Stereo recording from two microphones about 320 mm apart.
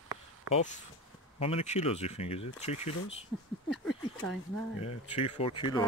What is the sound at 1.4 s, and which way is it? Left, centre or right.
Speech, centre.